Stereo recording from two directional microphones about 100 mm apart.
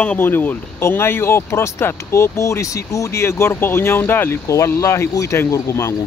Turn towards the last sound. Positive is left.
turn(degrees=30)  # may be behind; listen again after turning